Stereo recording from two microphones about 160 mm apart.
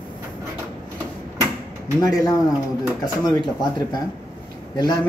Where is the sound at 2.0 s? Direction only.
25° left (ahead or behind).